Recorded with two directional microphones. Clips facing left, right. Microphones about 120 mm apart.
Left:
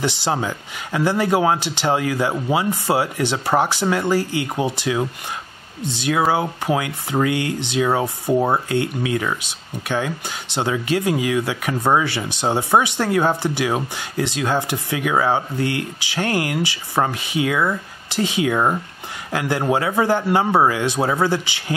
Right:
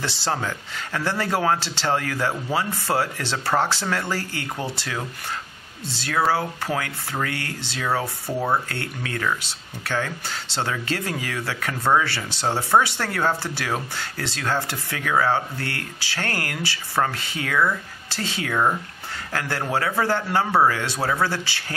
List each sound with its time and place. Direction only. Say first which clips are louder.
0.0 s speech: left 5 dB; 15° left (ahead or behind)